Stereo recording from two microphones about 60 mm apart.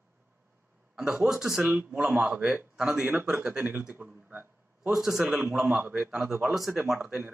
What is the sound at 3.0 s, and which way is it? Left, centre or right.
Speech, right.